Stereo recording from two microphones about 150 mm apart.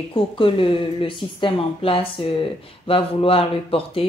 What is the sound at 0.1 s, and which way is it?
Speech, 35° left (ahead or behind).